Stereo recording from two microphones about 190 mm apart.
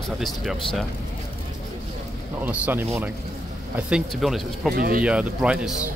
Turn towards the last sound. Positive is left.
turn(degrees=-5)  # may be behind; listen again after turning